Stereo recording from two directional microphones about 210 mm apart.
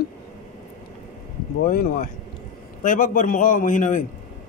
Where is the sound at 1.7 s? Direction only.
45° left (ahead or behind).